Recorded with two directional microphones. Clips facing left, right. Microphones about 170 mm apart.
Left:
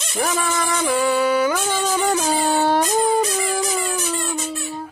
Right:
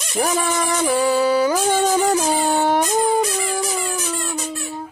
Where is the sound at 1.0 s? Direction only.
35° right (ahead or behind).